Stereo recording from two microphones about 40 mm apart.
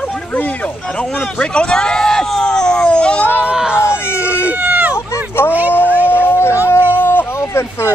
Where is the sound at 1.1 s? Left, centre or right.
Left.